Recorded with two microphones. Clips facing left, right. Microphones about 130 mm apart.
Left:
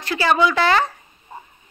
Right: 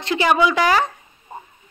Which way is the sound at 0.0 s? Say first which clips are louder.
Right 1 dB; 20° right (ahead or behind).